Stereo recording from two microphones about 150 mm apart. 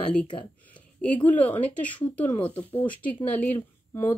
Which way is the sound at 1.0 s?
10° left (ahead or behind).